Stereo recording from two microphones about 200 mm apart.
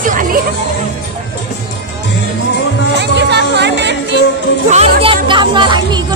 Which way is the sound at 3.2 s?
60° right (ahead or behind).